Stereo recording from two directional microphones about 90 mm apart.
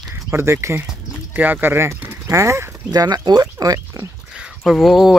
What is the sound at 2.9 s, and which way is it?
Speech, 45° right (ahead or behind).